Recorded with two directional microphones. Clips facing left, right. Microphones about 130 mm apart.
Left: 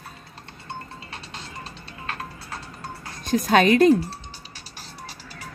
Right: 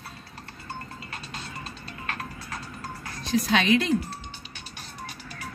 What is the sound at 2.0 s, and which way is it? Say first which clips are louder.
Music: left 2 dB; 30° left (ahead or behind).